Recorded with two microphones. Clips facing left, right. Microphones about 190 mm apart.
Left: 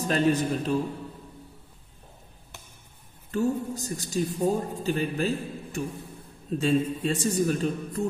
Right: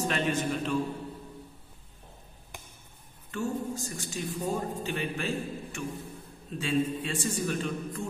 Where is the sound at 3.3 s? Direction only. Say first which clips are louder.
Left 5 dB; 40° left (ahead or behind).